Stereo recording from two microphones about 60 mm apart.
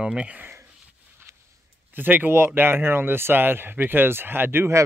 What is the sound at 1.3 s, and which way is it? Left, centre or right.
Walk, right.